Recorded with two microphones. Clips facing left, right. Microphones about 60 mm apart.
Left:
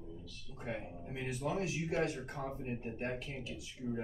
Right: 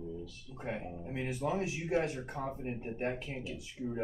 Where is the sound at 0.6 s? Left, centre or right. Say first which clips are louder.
Right 3 dB; centre.